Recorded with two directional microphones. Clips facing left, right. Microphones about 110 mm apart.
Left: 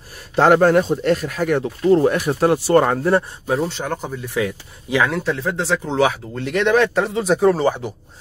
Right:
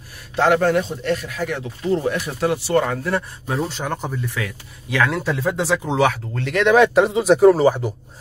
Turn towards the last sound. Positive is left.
turn(degrees=-5)  # may be behind; listen again after turning